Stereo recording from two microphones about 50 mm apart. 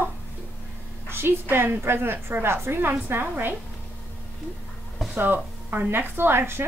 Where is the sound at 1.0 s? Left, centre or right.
Right.